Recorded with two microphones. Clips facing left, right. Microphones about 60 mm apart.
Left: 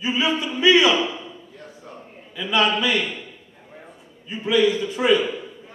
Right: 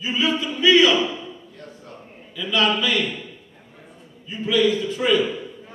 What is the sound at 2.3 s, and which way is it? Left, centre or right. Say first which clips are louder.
Speech: left 1 dB; centre.